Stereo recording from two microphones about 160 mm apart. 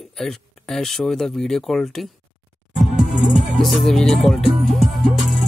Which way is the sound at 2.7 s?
50° right (ahead or behind).